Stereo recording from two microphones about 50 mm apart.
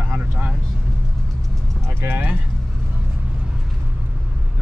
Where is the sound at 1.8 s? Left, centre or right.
Right.